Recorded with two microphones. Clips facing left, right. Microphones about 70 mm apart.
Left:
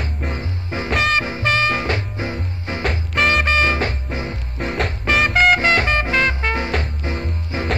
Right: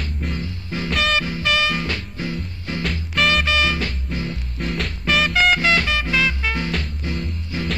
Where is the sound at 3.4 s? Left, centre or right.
Left.